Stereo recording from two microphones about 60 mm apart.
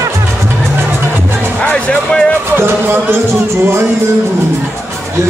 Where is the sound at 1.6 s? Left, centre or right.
Centre.